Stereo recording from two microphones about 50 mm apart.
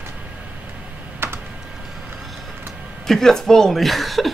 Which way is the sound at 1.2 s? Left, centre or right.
Right.